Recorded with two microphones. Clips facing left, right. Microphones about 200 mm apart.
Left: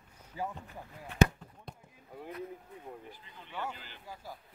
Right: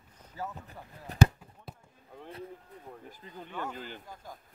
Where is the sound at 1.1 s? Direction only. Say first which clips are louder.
Right 1 dB; 40° right (ahead or behind).